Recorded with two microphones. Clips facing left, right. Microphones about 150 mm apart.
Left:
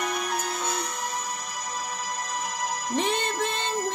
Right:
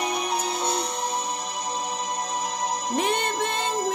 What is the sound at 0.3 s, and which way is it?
Music, 30° right (ahead or behind).